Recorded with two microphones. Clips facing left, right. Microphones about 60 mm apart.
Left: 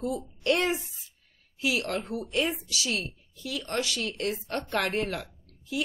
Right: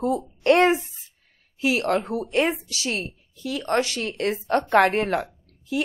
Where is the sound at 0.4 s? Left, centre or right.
Right.